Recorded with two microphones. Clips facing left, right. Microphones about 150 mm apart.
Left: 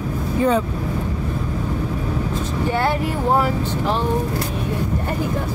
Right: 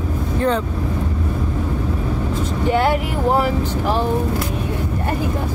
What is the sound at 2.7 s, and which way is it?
Speech, 15° right (ahead or behind).